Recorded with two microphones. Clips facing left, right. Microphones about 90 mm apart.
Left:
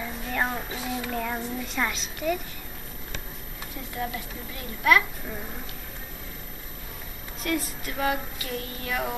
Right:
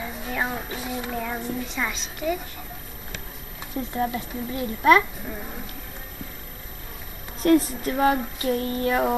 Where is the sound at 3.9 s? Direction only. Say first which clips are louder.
Right 5 dB; 30° right (ahead or behind).